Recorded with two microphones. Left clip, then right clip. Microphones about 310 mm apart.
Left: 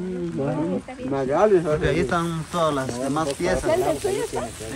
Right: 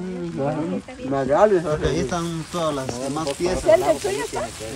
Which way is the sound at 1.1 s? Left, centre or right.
Right.